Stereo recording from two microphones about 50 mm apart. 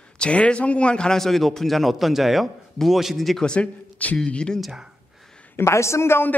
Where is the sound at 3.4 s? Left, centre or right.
Left.